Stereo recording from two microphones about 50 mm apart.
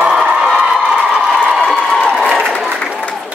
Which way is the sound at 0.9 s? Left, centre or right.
Centre.